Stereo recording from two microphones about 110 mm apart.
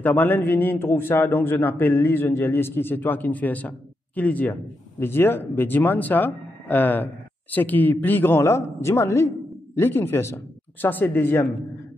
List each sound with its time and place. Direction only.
0.0 s a man's voice: 15° left (ahead or behind)